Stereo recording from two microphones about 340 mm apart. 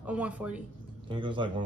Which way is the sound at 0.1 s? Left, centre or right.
Centre.